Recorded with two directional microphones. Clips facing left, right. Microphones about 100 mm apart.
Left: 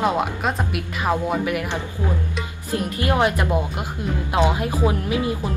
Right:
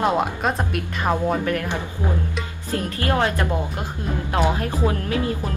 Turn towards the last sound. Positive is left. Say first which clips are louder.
# left 1 dB
turn(degrees=15)  # may be behind; listen again after turning